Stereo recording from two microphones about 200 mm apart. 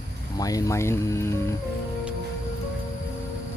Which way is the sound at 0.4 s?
15° left (ahead or behind).